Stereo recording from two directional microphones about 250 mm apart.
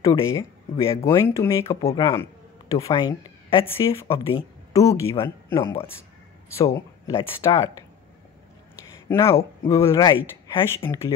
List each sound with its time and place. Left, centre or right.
0.0 s speech: centre
9.1 s speech: centre